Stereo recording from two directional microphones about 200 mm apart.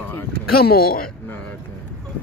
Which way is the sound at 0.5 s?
50° left (ahead or behind).